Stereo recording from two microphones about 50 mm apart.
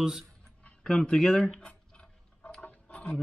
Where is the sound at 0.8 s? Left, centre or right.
Centre.